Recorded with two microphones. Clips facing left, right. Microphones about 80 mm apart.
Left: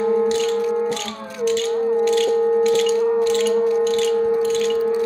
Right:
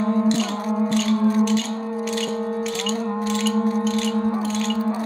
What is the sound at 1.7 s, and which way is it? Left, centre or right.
Music, centre.